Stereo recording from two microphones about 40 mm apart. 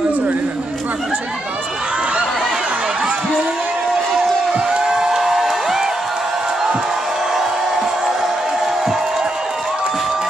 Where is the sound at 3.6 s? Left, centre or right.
Right.